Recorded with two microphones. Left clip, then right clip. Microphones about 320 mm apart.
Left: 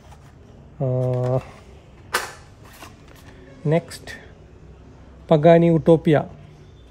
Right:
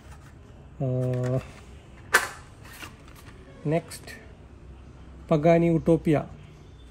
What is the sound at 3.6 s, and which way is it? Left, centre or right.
Speech, left.